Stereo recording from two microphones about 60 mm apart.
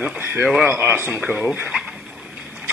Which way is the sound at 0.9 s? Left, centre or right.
Right.